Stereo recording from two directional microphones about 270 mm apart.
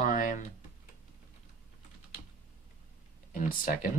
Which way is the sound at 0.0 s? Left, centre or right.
Left.